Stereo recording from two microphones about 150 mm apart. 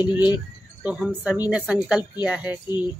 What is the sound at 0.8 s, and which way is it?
Speech, 5° right (ahead or behind).